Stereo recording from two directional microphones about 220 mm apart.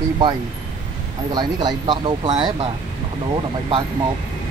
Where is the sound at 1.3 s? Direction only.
20° right (ahead or behind).